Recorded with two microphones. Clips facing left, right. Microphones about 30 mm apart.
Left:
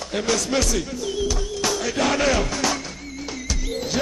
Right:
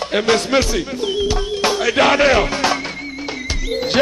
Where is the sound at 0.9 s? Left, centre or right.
Right.